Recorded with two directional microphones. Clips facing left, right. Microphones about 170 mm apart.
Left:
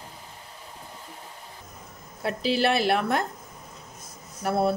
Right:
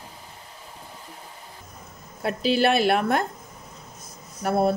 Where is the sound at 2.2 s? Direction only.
55° right (ahead or behind).